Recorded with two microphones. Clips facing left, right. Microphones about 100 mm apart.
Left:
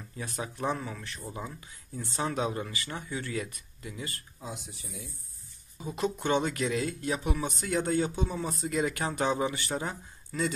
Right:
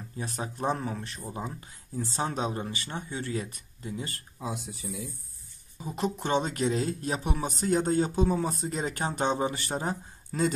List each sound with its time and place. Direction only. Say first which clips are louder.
0.2 s speech: right 2 dB; 35° right (ahead or behind)
4.4 s speech: right 6 dB; 85° right
5.9 s speech: even; 30° right (ahead or behind)